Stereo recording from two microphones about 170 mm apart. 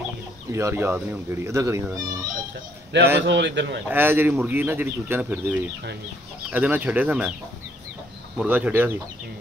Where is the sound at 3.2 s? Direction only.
90° right.